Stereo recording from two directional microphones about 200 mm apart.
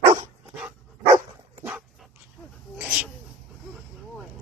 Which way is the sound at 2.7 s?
5° right (ahead or behind).